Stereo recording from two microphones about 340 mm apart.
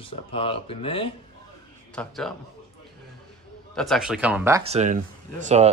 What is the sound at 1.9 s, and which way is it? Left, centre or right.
Speech, centre.